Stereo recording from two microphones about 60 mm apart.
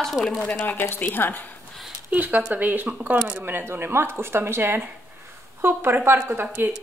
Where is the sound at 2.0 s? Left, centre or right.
Right.